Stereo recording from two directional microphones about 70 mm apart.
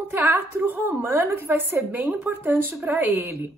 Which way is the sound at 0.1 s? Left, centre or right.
Right.